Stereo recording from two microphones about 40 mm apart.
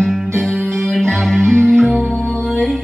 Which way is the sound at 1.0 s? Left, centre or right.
Centre.